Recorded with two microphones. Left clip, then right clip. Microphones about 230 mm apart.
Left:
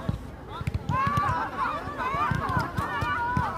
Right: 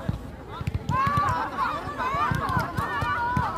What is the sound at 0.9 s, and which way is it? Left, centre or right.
Run, right.